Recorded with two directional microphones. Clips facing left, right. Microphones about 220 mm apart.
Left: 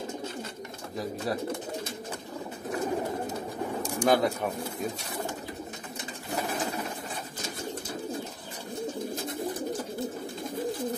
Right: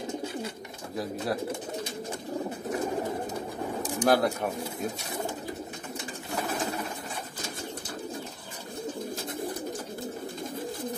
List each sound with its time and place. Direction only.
4.0 s speech: 5° right (ahead or behind)